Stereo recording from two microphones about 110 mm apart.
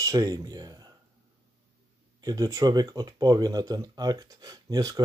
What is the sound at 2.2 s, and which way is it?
Speech, 35° right (ahead or behind).